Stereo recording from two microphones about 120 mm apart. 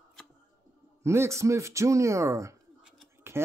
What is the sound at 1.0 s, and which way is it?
Speech, 20° right (ahead or behind).